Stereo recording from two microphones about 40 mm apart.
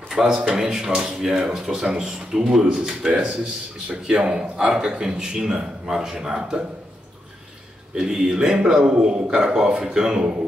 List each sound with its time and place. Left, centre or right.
0.1 s a man's voice: centre
7.9 s speech: centre